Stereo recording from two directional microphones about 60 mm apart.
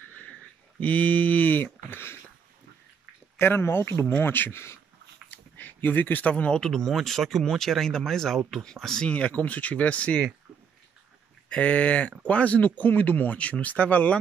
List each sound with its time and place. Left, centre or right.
0.7 s speech: left
3.3 s speech: left
5.3 s a sound: left
6.6 s speech: centre
9.4 s speech: left
11.5 s speech: left